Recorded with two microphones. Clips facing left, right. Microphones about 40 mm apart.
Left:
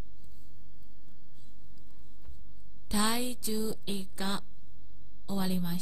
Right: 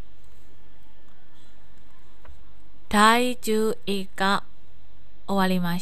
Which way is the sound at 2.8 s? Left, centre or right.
Right.